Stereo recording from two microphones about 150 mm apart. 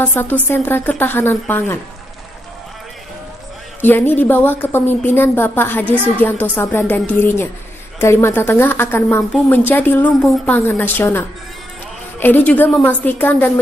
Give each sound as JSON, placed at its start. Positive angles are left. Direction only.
{"t": 0.0, "sound": "a woman's voice", "side_deg": 10}
{"t": 3.8, "sound": "a woman's voice", "side_deg": 15}
{"t": 10.2, "sound": "a woman's voice", "side_deg": 0}
{"t": 10.5, "sound": "a woman's voice", "side_deg": 10}